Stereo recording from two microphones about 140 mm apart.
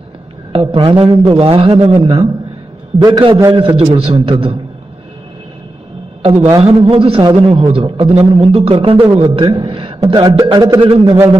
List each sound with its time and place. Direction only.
0.5 s a man's voice: 40° right (ahead or behind)
3.5 s a man's voice: 40° right (ahead or behind)
6.2 s a man's voice: 55° right (ahead or behind)
6.6 s a man's voice: 40° right (ahead or behind)